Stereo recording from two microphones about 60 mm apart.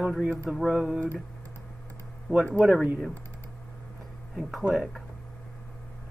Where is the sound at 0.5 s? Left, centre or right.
Centre.